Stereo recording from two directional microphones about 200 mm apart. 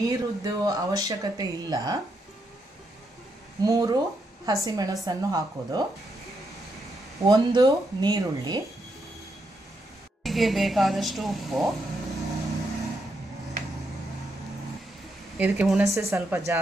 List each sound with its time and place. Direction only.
0.0 s speech: 15° right (ahead or behind)
3.6 s speech: 15° right (ahead or behind)
7.2 s speech: 20° right (ahead or behind)
10.2 s speech: centre (ahead or behind)
15.3 s speech: 10° right (ahead or behind)